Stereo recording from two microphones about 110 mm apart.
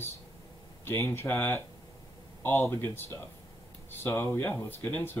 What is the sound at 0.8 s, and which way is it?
Speech, 20° left (ahead or behind).